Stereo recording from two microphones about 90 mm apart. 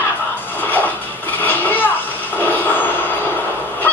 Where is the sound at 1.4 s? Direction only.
20° left (ahead or behind).